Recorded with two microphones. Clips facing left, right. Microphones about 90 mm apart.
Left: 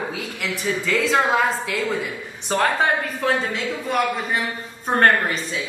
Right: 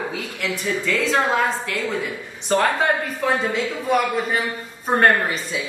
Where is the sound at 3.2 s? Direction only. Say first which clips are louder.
Right 2 dB; centre (ahead or behind).